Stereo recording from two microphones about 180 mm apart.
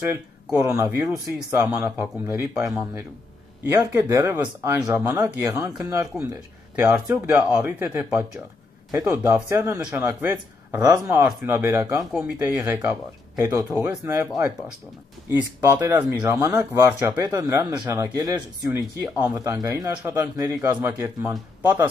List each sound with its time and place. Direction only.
0.1 s speech: 15° right (ahead or behind); by 13.8 s centre (ahead or behind)
14.0 s speech: 15° right (ahead or behind)